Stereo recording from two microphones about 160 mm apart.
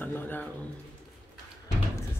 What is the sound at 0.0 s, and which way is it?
Speech, 10° left (ahead or behind).